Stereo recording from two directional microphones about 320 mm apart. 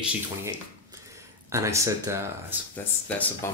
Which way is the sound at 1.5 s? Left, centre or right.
Centre.